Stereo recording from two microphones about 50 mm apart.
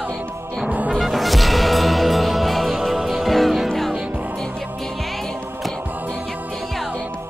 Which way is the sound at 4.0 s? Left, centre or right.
Right.